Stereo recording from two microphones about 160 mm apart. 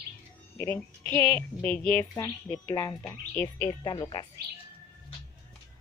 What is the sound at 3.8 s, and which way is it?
Speech, 30° left (ahead or behind).